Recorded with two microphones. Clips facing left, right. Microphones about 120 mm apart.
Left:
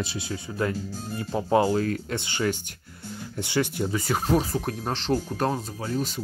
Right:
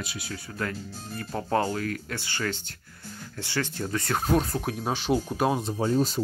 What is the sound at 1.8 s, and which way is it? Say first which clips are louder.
Speech: left 5 dB; 25° left (ahead or behind).